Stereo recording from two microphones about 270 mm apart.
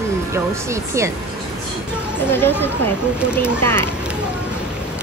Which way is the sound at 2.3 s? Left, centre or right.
Centre.